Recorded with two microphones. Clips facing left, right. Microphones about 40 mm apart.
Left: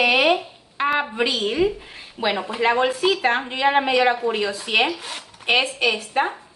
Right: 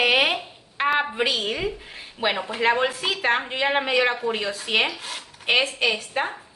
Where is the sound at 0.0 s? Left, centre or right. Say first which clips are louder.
Left 2 dB; centre.